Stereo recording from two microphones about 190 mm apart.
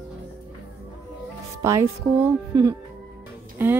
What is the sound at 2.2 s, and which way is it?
Speech, 15° right (ahead or behind).